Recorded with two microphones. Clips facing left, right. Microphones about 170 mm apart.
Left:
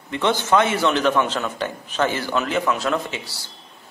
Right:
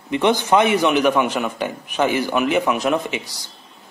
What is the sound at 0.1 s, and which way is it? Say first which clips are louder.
A man's voice: right 3 dB; 15° right (ahead or behind).